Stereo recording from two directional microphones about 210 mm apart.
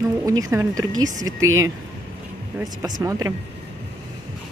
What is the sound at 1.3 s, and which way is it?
Speech, 80° right.